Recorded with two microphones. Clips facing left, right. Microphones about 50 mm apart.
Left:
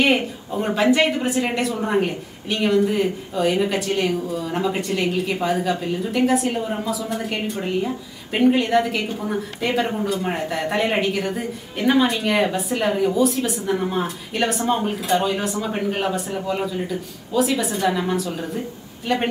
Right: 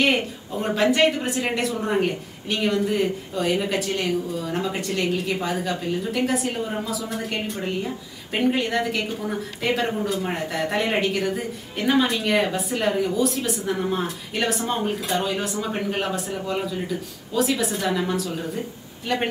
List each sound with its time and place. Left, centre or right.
0.0 s speech: centre